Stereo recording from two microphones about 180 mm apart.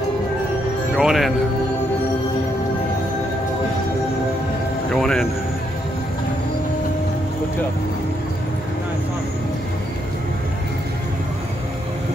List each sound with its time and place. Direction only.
0.9 s speech: centre (ahead or behind)
4.9 s music: centre (ahead or behind)